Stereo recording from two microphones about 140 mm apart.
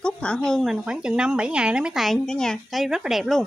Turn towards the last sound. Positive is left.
turn(degrees=0)  # may be behind; listen again after turning